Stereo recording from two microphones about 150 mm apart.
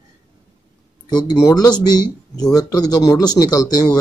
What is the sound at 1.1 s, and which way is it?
Speech, 25° left (ahead or behind).